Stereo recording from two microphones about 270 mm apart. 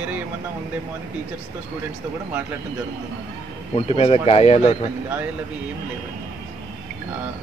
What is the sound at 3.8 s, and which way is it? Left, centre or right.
Speech, left.